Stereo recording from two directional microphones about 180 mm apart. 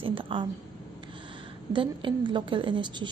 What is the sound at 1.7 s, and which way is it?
A woman's voice, 25° right (ahead or behind).